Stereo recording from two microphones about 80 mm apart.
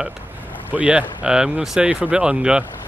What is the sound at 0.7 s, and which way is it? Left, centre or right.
Speech, centre.